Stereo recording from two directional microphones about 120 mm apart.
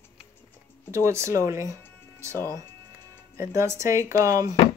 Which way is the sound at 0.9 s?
25° right (ahead or behind).